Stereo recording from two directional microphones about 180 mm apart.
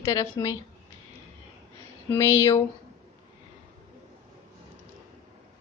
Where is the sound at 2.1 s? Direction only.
15° left (ahead or behind).